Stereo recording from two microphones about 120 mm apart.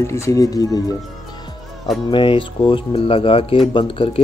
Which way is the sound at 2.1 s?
45° left (ahead or behind).